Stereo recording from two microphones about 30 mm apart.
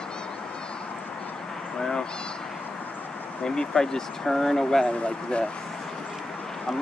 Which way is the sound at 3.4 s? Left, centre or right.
Left.